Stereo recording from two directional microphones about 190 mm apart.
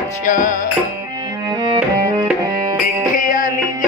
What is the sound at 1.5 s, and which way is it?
Music, 25° right (ahead or behind).